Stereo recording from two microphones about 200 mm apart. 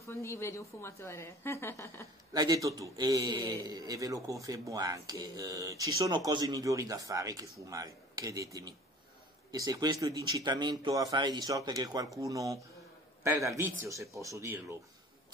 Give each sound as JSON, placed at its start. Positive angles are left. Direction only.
{"t": 0.0, "sound": "a woman's voice", "side_deg": 15}
{"t": 2.3, "sound": "a man's voice", "side_deg": -20}